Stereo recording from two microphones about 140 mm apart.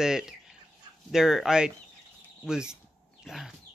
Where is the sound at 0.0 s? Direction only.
5° right (ahead or behind).